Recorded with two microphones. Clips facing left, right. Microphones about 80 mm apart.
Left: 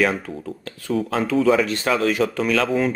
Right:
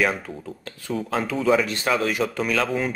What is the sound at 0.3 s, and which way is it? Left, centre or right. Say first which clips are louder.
Speech: left 4 dB; centre.